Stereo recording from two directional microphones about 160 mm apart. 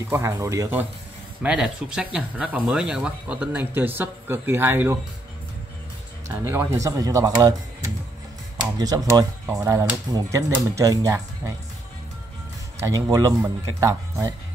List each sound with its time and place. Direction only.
0.1 s speech: 20° right (ahead or behind)
6.2 s speech: 15° right (ahead or behind)
12.8 s speech: 20° right (ahead or behind)